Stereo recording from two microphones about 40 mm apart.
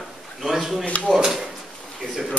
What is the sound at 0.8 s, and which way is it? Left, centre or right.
Speech, left.